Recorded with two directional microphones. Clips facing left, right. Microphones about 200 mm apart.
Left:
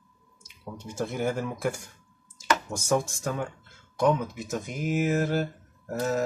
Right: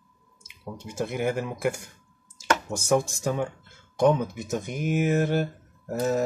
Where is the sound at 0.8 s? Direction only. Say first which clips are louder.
Right 1 dB; 10° right (ahead or behind).